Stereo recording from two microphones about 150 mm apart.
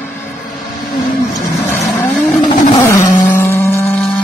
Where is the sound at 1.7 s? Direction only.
15° left (ahead or behind).